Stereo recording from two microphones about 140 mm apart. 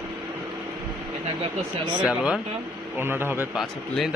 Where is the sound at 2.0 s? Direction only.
5° right (ahead or behind).